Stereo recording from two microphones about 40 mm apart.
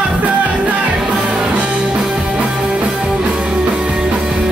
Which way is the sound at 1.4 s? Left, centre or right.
Right.